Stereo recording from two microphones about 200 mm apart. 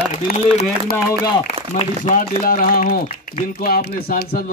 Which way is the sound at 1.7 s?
30° left (ahead or behind).